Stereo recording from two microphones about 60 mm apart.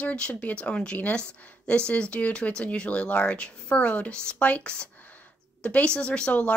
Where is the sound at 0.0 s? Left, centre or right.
Left.